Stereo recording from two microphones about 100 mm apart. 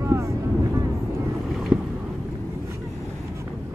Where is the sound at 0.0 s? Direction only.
30° right (ahead or behind).